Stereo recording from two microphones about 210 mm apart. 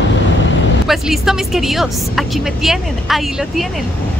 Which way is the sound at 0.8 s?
Centre (ahead or behind).